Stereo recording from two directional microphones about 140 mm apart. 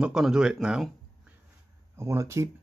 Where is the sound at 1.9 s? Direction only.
20° right (ahead or behind).